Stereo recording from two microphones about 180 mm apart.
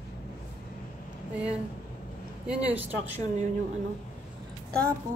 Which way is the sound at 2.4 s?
5° right (ahead or behind).